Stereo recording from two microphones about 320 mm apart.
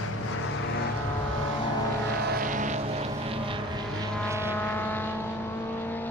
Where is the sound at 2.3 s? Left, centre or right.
Right; by 4.6 s centre.